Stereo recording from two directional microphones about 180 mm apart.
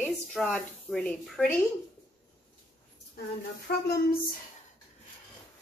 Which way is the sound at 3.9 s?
60° left (ahead or behind).